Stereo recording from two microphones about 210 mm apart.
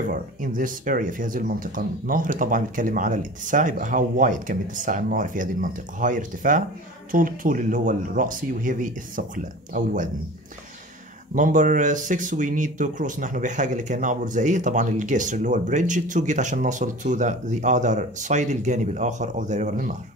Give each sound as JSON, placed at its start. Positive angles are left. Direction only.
{"t": 0.0, "sound": "speech", "side_deg": -40}
{"t": 11.3, "sound": "speech", "side_deg": -40}